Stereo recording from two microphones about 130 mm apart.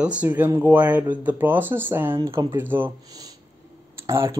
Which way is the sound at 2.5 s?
15° right (ahead or behind).